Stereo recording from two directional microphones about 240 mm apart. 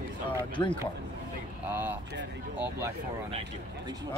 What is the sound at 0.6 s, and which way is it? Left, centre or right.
Speech, centre.